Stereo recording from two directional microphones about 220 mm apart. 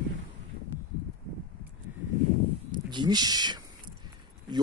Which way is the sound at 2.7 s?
20° right (ahead or behind).